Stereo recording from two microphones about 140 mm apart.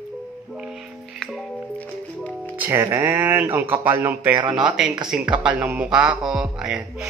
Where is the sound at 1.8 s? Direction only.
10° left (ahead or behind).